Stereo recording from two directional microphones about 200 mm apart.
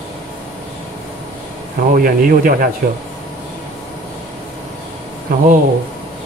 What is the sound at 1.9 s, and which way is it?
Speech, 45° right (ahead or behind).